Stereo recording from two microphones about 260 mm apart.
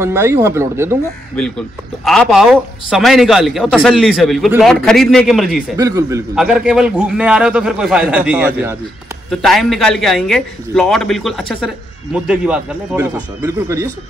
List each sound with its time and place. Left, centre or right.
0.0 s speech: centre
2.0 s a man's voice: centre
5.8 s a man's voice: centre